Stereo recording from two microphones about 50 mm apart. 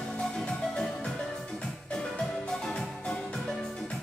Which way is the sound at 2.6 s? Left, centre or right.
Centre.